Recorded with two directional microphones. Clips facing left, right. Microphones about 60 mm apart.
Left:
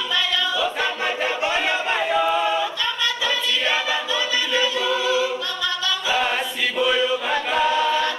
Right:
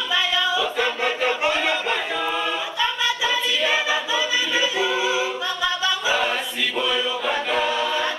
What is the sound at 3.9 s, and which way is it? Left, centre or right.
A capella, centre.